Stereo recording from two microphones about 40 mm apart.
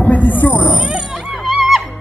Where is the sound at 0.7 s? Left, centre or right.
Right.